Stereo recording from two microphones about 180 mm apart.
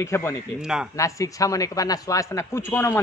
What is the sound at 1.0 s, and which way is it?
Speech, 15° left (ahead or behind).